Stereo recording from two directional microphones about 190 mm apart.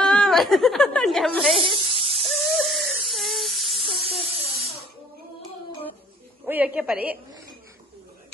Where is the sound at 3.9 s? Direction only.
30° right (ahead or behind).